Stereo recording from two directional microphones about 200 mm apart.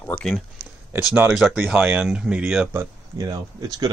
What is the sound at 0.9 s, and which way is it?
Speech, 10° right (ahead or behind).